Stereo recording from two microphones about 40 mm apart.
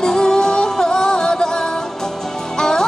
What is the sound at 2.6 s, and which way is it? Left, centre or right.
Music, centre.